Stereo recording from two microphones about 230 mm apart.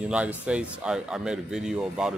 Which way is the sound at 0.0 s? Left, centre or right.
Centre.